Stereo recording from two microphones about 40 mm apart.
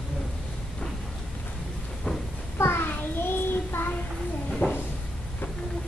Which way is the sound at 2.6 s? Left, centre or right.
Left.